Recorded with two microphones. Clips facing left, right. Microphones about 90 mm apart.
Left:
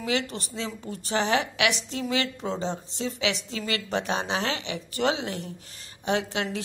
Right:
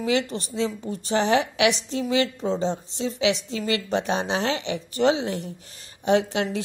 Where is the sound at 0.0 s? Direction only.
30° right (ahead or behind).